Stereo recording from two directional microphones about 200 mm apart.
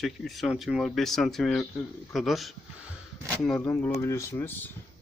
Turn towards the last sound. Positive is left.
turn(degrees=10)  # may be behind; listen again after turning